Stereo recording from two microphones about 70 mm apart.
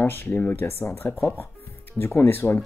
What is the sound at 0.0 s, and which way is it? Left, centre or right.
Speech, left.